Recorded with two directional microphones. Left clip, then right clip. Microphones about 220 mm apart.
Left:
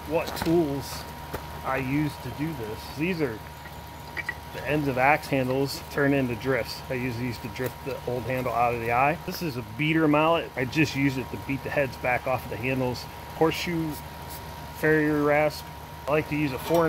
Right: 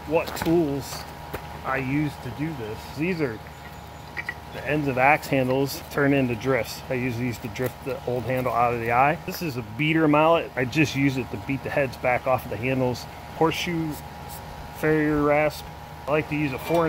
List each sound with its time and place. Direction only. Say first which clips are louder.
0.1 s speech: right 3 dB; 15° right (ahead or behind)
1.7 s speech: right 1 dB; 20° right (ahead or behind)
3.0 s speech: right 1 dB; 25° right (ahead or behind)
4.6 s speech: right 2 dB; 15° right (ahead or behind)
14.8 s speech: right 1 dB; 25° right (ahead or behind)
16.1 s speech: right 1 dB; 15° right (ahead or behind)